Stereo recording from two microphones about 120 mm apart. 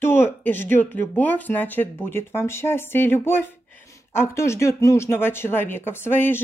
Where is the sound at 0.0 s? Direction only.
20° left (ahead or behind).